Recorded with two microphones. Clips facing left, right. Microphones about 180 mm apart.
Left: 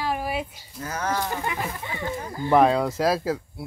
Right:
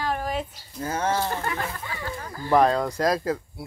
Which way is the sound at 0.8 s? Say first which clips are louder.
Right 2 dB; 30° right (ahead or behind).